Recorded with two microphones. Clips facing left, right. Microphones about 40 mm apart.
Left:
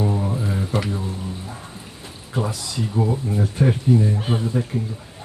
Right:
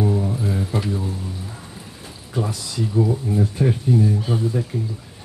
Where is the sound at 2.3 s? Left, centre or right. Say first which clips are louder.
Even; left.